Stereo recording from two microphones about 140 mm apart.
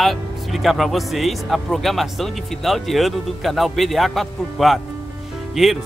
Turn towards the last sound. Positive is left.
turn(degrees=0)  # may be behind; listen again after turning